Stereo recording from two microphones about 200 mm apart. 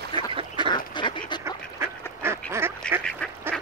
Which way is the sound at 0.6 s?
25° left (ahead or behind).